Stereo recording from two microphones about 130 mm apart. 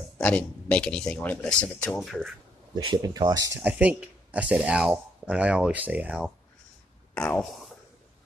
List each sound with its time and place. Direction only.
0.2 s speech: 10° left (ahead or behind)
2.7 s speech: 40° right (ahead or behind)
3.0 s speech: 30° right (ahead or behind)
3.5 s speech: 10° right (ahead or behind)
7.2 s speech: 10° left (ahead or behind)